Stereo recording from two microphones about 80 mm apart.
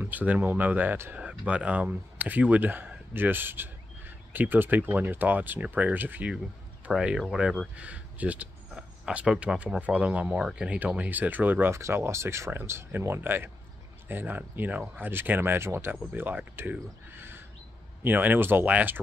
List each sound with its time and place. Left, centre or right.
0.0 s speech: right
1.1 s speech: centre
6.9 s speech: centre
11.7 s speech: right
17.1 s a sound: right
18.0 s speech: right